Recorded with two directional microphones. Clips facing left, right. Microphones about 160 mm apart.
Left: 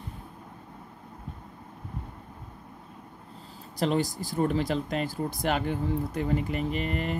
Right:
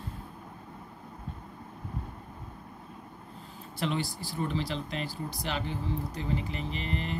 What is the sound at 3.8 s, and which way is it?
Speech, 45° left (ahead or behind).